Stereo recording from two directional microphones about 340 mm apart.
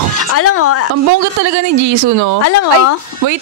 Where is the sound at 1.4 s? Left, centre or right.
Right.